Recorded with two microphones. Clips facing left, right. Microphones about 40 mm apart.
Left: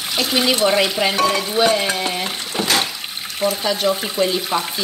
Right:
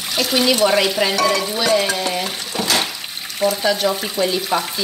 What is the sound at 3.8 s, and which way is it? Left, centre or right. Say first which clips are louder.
Speech: left 1 dB; centre.